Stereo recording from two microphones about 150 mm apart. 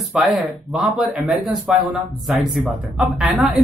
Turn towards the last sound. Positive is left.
turn(degrees=-10)  # may be behind; listen again after turning